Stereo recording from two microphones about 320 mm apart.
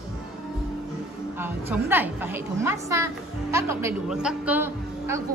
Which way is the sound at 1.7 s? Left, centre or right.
Centre.